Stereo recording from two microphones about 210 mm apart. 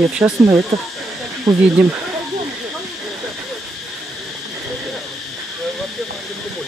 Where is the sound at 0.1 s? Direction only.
10° right (ahead or behind).